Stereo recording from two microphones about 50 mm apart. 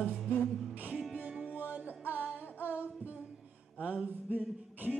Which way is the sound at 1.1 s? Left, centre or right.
Right.